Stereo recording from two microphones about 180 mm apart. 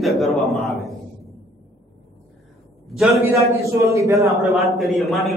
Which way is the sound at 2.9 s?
Centre (ahead or behind).